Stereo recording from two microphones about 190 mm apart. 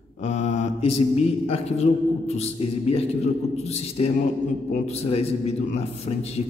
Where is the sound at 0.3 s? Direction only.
40° left (ahead or behind).